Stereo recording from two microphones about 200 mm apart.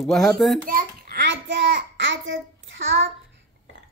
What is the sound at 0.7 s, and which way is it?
Child singing, 55° right (ahead or behind).